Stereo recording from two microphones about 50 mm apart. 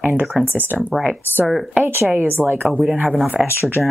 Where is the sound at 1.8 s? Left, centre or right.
Right.